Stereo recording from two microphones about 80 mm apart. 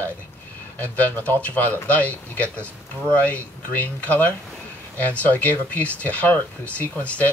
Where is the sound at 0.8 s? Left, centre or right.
Left.